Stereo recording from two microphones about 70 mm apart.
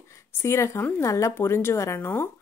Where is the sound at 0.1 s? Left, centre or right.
Left.